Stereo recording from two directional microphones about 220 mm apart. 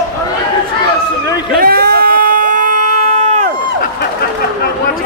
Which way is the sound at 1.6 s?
45° right (ahead or behind).